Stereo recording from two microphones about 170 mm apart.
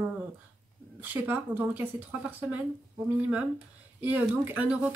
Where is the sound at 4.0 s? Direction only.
10° right (ahead or behind).